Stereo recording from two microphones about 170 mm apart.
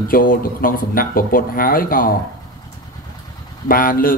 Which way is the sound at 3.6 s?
55° left (ahead or behind).